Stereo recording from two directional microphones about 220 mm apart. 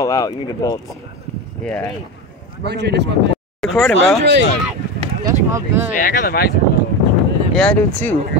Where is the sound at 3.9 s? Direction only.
55° right (ahead or behind).